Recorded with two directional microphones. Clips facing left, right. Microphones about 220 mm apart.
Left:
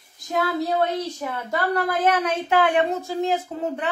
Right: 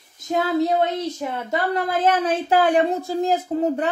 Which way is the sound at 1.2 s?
25° right (ahead or behind).